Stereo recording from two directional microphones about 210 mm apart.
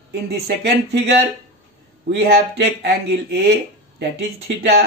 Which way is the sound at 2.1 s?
50° right (ahead or behind).